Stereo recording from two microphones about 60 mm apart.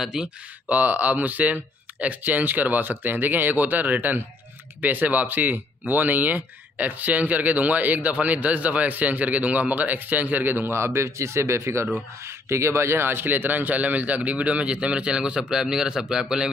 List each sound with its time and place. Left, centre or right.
0.0 s a man's voice: centre
0.7 s a man's voice: right